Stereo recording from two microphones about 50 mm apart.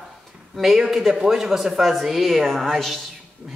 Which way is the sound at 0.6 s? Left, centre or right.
Centre.